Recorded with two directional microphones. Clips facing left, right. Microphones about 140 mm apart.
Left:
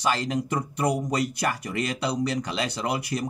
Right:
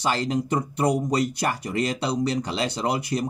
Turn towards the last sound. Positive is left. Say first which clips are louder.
# right 3 dB
turn(degrees=-30)  # may be behind; listen again after turning